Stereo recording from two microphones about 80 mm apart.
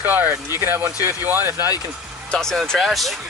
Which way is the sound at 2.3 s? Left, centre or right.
Centre.